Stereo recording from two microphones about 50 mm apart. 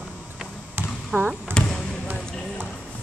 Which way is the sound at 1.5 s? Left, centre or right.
Right.